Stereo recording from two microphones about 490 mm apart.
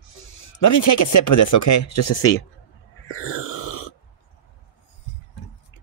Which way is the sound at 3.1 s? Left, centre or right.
Left.